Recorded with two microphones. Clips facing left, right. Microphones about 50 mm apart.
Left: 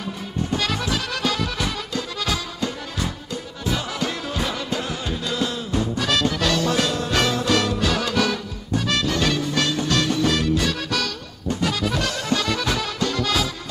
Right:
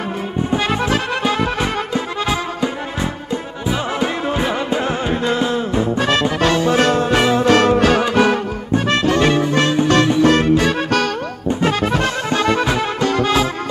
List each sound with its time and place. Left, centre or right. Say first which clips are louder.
0.4 s music: right 6 dB; right
7.2 s music: right 3 dB; right
7.4 s music: right 9 dB; right